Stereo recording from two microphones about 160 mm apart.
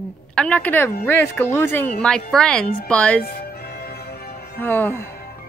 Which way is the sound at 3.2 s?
75° left (ahead or behind).